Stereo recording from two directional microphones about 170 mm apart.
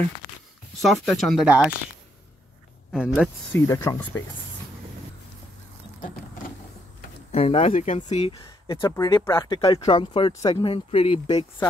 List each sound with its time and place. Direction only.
0.8 s speech: centre (ahead or behind)
2.9 s speech: 5° right (ahead or behind)
3.5 s speech: 15° left (ahead or behind)
7.3 s speech: 35° left (ahead or behind)
8.3 s speech: 25° left (ahead or behind)